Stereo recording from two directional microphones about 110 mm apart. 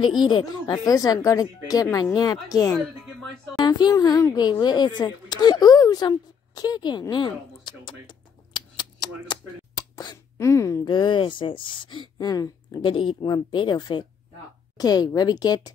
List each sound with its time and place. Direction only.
0.2 s speech: 40° left (ahead or behind)
3.5 s a sound: 40° left (ahead or behind)
3.9 s speech: 30° left (ahead or behind)
10.4 s speech: 25° left (ahead or behind)
10.9 s speech: 45° left (ahead or behind)
12.2 s speech: 35° left (ahead or behind)
12.8 s speech: 50° left (ahead or behind)